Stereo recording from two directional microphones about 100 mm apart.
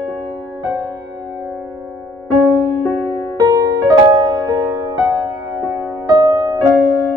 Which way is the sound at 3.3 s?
35° right (ahead or behind).